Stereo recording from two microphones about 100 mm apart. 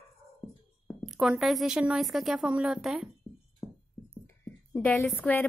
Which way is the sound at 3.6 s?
60° left (ahead or behind).